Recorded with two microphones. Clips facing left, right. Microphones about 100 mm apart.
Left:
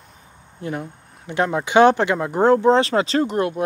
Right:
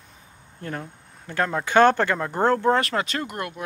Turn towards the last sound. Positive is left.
turn(degrees=30)  # may be behind; listen again after turning